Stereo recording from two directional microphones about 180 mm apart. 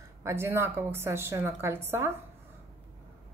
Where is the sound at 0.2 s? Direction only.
15° right (ahead or behind).